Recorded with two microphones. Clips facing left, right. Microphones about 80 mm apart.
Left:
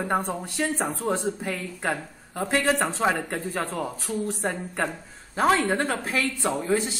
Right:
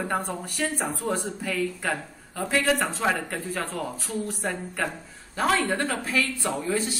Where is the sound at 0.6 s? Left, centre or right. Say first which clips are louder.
Left 1 dB; left.